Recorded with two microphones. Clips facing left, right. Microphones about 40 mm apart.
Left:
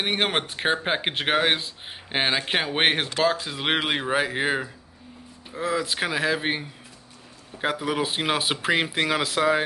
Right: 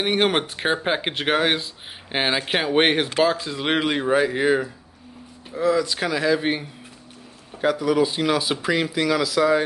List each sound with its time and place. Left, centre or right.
0.0 s speech: centre
3.4 s speech: centre
7.6 s speech: left